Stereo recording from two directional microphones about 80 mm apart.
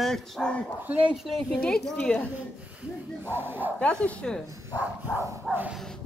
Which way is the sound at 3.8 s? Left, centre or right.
Centre.